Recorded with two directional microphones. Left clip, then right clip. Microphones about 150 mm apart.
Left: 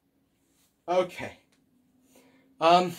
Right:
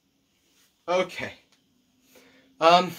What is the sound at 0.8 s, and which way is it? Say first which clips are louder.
Speech: right 1 dB; 30° right (ahead or behind).